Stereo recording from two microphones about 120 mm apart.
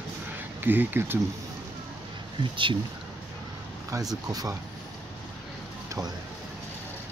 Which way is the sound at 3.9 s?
30° right (ahead or behind).